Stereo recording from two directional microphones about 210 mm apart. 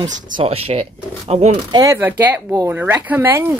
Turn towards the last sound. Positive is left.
turn(degrees=-10)  # may be behind; listen again after turning